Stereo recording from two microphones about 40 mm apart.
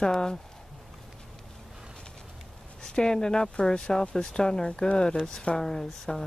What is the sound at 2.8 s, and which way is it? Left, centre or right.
Speech, centre.